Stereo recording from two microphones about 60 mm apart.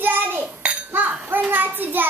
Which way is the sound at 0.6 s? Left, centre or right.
Right.